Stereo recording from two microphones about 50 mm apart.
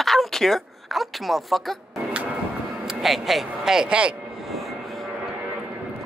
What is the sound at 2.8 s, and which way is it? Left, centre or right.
Speech, centre.